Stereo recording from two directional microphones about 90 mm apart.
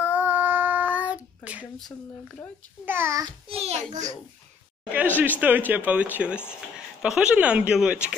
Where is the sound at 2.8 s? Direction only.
25° right (ahead or behind).